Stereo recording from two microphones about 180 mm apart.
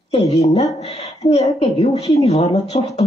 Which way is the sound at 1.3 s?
35° left (ahead or behind).